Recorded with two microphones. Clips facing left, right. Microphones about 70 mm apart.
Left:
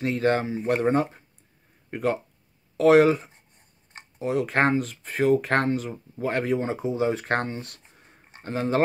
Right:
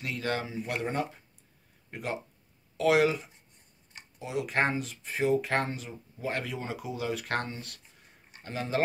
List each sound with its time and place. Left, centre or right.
0.0 s speech: left